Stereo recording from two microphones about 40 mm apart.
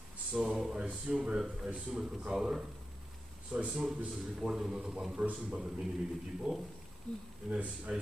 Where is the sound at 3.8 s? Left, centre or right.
Centre.